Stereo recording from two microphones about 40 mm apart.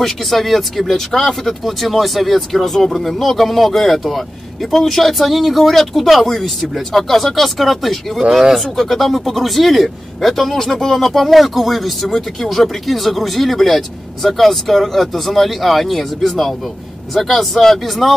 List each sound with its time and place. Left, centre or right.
0.0 s speech: centre
8.2 s speech: centre